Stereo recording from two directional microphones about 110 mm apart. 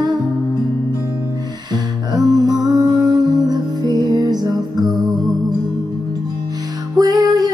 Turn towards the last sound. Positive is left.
turn(degrees=-35)  # may be behind; listen again after turning